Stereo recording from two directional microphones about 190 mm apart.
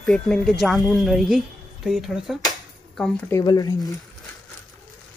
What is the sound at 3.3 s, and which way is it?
Speech, 20° left (ahead or behind).